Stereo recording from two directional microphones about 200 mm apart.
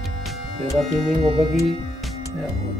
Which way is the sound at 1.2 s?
25° right (ahead or behind).